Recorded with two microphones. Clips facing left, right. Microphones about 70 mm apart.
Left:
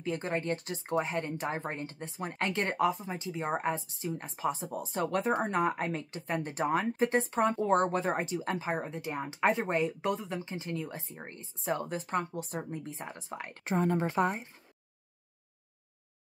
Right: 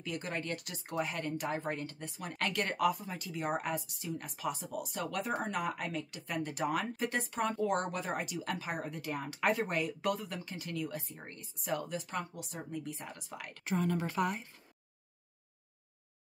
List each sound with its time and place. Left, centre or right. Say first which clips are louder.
0.0 s speech: left 6 dB; left